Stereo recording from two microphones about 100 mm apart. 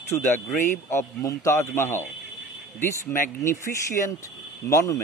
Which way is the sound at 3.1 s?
30° left (ahead or behind).